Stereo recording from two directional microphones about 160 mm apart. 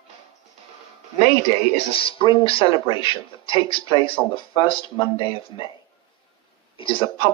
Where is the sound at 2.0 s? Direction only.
35° left (ahead or behind).